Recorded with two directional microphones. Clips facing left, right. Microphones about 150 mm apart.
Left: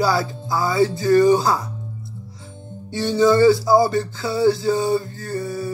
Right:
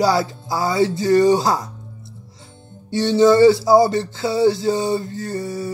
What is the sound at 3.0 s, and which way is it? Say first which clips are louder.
Speech: right 2 dB; 20° right (ahead or behind).